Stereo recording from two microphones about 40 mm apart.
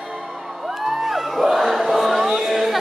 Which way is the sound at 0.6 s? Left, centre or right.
Centre.